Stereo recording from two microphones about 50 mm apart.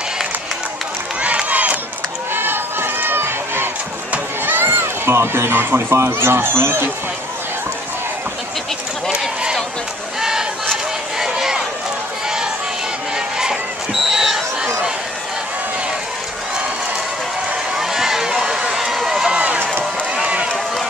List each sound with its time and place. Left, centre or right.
1.2 s crowd: right
2.3 s run: right
4.5 s goat: right
6.0 s speech: right
9.1 s a sound: centre
10.2 s crowd: centre
13.4 s a sound: centre
17.7 s run: centre
19.3 s run: right